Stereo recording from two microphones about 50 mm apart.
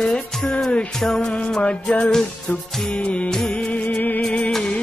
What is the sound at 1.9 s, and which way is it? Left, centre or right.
Music, left.